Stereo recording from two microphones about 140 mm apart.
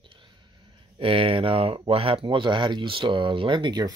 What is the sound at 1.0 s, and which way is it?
Speech, 40° right (ahead or behind).